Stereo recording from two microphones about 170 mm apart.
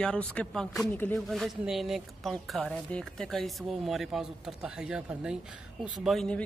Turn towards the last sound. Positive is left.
turn(degrees=5)  # may be behind; listen again after turning